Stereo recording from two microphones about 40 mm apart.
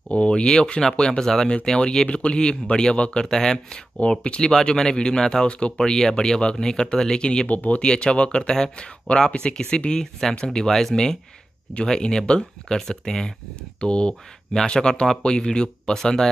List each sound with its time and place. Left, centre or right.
0.1 s speech: left
7.4 s speech: left
7.8 s speech: left
13.7 s speech: left